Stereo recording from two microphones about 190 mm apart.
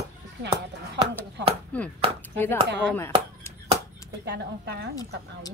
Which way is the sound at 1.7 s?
5° left (ahead or behind).